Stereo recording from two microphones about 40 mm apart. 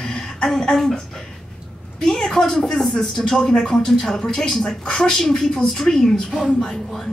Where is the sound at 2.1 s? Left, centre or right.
Centre.